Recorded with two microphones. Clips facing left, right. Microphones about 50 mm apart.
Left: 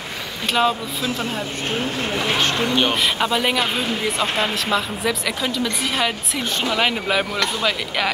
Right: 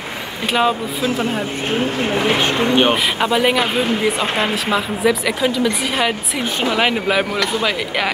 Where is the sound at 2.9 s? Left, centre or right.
Centre.